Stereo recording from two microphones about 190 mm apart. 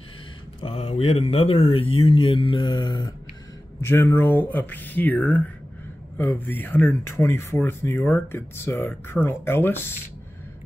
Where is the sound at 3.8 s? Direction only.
10° left (ahead or behind).